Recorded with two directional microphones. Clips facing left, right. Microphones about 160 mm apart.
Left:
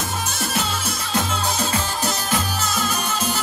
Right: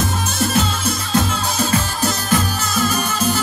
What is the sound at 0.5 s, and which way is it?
Music, 10° left (ahead or behind).